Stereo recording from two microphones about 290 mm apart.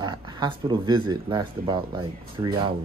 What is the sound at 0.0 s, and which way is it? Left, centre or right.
Speech, centre.